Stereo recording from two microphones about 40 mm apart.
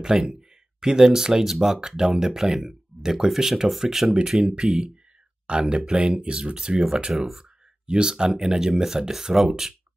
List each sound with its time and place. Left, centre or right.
0.3 s speech: centre